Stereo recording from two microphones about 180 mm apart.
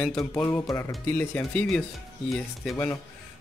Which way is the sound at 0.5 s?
15° left (ahead or behind).